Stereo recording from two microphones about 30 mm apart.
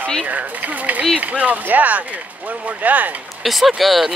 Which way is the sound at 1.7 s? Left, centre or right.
Right.